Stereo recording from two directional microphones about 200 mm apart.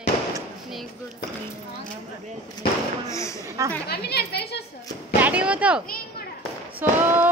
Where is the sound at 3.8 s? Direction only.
55° left (ahead or behind).